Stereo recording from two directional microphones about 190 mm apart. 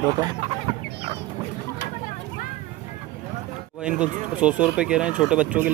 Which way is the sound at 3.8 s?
5° right (ahead or behind).